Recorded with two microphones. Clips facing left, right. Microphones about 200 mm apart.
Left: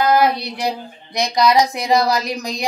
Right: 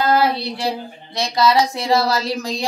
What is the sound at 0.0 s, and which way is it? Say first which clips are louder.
Speech: left 2 dB; 15° left (ahead or behind).